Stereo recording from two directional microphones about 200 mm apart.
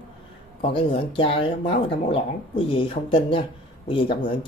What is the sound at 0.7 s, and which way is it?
Speech, 25° left (ahead or behind).